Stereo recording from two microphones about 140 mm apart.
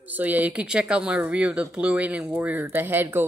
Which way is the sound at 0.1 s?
10° right (ahead or behind).